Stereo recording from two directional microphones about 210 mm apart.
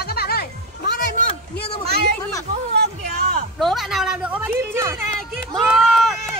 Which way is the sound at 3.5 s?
Centre (ahead or behind).